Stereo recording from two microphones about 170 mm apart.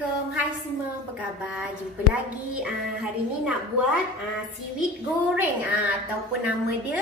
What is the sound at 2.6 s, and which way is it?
Speech, 5° right (ahead or behind).